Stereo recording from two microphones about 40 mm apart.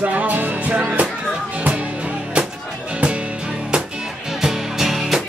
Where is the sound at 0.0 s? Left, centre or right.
Right.